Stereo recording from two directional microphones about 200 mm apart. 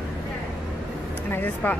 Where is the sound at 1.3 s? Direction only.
10° left (ahead or behind).